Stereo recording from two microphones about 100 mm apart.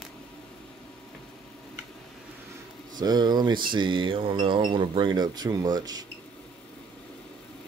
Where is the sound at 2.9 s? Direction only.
45° right (ahead or behind).